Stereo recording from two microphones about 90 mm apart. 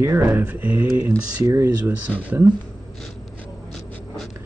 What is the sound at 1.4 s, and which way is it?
Speech, 35° right (ahead or behind).